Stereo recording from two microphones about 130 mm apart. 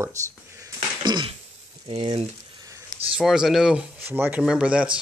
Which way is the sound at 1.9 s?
45° right (ahead or behind).